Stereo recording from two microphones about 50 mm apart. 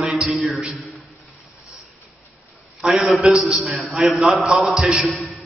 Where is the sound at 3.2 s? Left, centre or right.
Centre.